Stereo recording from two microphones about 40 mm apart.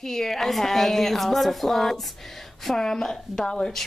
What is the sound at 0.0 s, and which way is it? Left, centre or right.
A woman's voice, centre.